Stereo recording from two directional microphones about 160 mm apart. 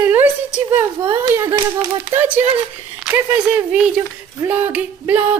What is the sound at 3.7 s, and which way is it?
Speech, 5° right (ahead or behind).